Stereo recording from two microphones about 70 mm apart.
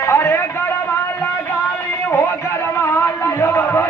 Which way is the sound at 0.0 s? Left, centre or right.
Left.